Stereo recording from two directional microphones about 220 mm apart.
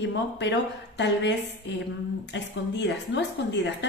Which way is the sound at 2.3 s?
55° left (ahead or behind).